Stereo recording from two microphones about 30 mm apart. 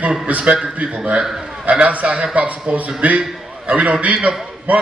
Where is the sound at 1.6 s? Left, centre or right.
Right.